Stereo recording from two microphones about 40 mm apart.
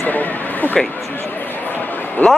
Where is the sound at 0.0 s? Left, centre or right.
Left.